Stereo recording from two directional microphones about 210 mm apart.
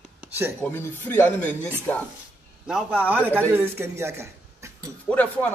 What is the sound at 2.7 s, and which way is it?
A man's voice, centre (ahead or behind).